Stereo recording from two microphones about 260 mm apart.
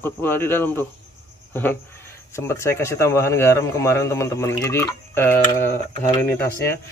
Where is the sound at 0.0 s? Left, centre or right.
Centre.